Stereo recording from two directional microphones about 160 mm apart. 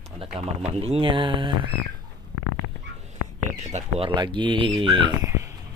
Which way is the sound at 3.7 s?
45° right (ahead or behind).